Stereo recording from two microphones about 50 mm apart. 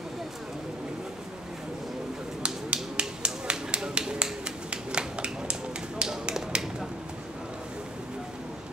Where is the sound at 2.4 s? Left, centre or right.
Right.